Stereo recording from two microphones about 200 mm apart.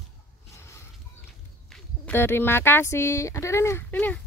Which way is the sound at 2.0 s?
10° left (ahead or behind).